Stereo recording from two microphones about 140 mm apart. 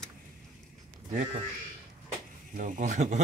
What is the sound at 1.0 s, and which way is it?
Speech, 55° right (ahead or behind).